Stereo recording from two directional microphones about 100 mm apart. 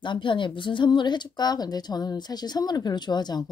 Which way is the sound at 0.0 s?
55° left (ahead or behind).